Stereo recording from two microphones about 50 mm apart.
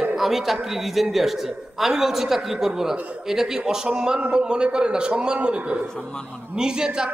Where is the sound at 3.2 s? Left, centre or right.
Centre.